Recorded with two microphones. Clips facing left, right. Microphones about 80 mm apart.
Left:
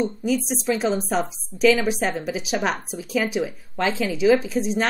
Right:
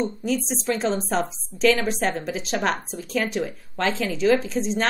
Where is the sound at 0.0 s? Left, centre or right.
Centre.